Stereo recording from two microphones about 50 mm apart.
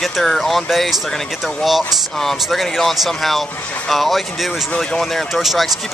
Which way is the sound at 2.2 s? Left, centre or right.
Centre.